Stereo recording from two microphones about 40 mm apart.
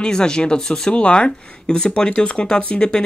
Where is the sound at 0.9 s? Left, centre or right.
Left.